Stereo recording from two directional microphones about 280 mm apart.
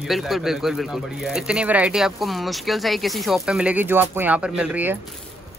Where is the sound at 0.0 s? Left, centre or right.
Centre.